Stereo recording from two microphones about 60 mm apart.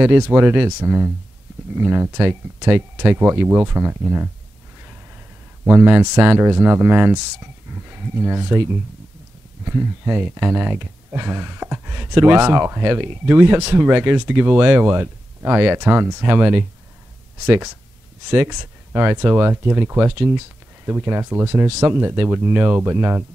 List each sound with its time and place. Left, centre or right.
0.0 s speech: right
5.7 s speech: right
18.3 s speech: right